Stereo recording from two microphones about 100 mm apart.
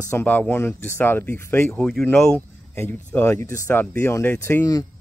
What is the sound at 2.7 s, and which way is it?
Speech, 20° left (ahead or behind).